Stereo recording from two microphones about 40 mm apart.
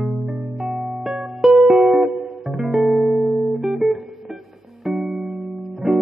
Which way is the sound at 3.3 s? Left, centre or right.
Centre.